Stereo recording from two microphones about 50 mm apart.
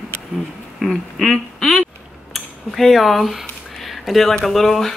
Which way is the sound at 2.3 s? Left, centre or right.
Centre.